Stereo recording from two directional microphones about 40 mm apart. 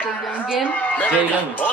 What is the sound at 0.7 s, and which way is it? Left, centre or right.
Speech, left.